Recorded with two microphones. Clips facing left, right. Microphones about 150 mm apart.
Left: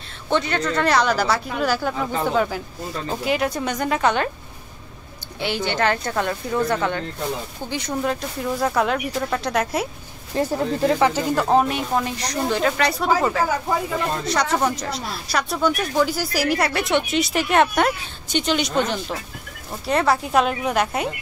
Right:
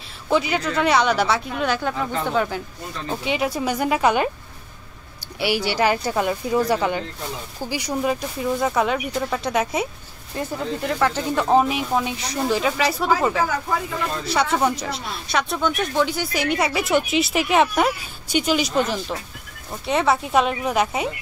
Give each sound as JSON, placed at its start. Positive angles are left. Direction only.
{"t": 0.3, "sound": "speech", "side_deg": -5}
{"t": 5.4, "sound": "speech", "side_deg": -10}
{"t": 10.3, "sound": "speech", "side_deg": 30}
{"t": 11.0, "sound": "speech", "side_deg": 10}